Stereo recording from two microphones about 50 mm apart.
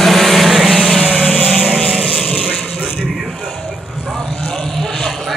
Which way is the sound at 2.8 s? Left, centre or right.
Centre.